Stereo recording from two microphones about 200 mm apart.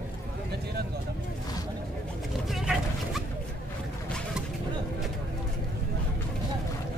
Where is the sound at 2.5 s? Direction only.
Centre (ahead or behind).